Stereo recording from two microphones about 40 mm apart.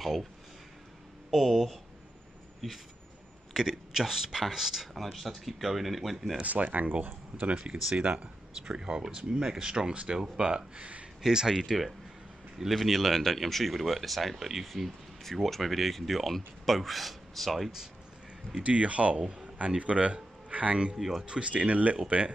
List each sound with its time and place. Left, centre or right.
0.0 s speech: centre
1.3 s speech: centre
2.6 s speech: centre
3.5 s speech: centre
6.4 s speech: right
7.7 s speech: right
10.8 s speech: right
11.2 s speech: centre
12.6 s speech: centre
18.6 s speech: right
20.9 s speech: centre
21.3 s speech: right